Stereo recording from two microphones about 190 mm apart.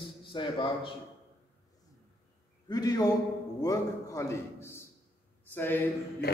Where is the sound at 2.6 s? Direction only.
20° left (ahead or behind).